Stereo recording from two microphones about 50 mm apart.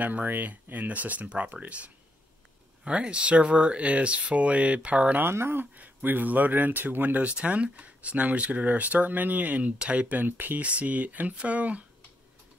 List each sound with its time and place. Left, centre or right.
0.0 s speech: right
5.2 s speech: right
5.8 s speech: right
7.4 s speech: right
10.1 s speech: right
10.6 s speech: right